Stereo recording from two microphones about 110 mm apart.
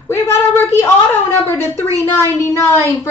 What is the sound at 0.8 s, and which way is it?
A woman's voice, 20° left (ahead or behind).